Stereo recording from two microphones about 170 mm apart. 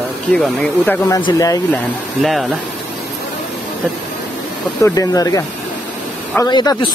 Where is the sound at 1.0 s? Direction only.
20° left (ahead or behind).